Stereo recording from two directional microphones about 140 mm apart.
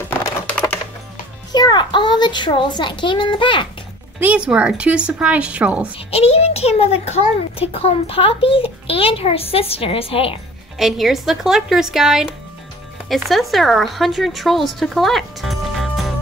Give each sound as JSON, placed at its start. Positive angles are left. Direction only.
{"t": 0.1, "sound": "typing", "side_deg": 10}
{"t": 1.5, "sound": "a child's voice", "side_deg": 30}
{"t": 4.5, "sound": "speech", "side_deg": -10}
{"t": 5.9, "sound": "a child's voice", "side_deg": 45}
{"t": 10.8, "sound": "speech", "side_deg": 0}